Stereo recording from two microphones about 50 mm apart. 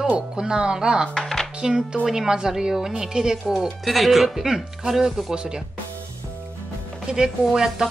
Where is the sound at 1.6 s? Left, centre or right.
Centre.